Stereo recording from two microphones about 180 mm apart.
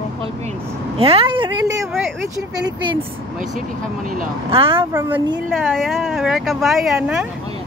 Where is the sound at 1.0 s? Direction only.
30° right (ahead or behind).